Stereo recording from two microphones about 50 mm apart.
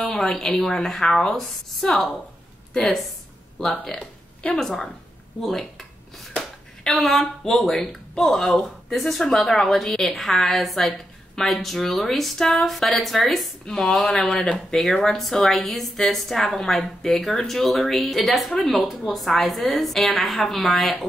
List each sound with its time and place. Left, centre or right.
0.2 s a woman's voice: centre
3.8 s a sound: centre
4.6 s a woman's voice: centre
6.3 s a sound: centre
7.0 s a woman's voice: centre
13.7 s a woman's voice: centre